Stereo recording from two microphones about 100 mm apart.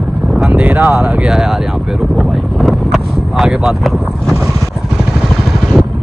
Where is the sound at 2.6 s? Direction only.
Centre (ahead or behind).